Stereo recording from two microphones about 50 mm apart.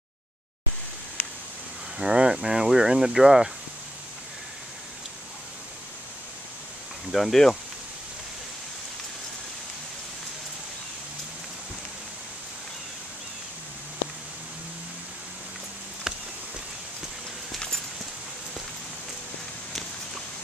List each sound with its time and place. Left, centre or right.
2.0 s speech: centre
7.1 s speech: centre
16.1 s a sound: centre